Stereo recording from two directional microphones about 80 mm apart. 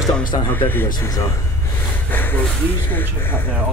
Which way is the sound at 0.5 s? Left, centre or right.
Left.